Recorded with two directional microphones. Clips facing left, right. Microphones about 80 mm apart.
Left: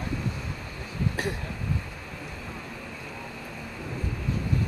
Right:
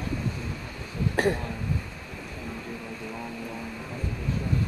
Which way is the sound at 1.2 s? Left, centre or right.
Right.